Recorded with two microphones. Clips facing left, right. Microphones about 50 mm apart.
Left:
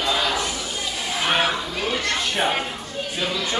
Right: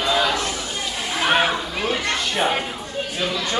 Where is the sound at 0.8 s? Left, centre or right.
Centre.